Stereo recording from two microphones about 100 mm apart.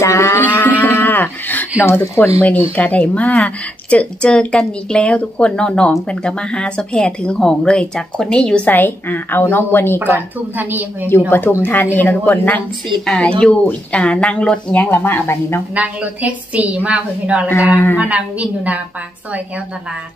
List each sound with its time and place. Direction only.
0.0 s cattle: 30° left (ahead or behind)
0.4 s cattle: 20° left (ahead or behind)
1.8 s speech: 20° left (ahead or behind)
9.9 s a woman's voice: 20° right (ahead or behind)
11.1 s speech: 20° left (ahead or behind)
13.0 s speech: 5° left (ahead or behind); by 15.6 s 25° left (ahead or behind)
15.7 s a woman's voice: 15° right (ahead or behind)